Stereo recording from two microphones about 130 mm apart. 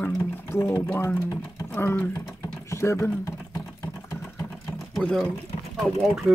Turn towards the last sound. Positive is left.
turn(degrees=0)  # may be behind; listen again after turning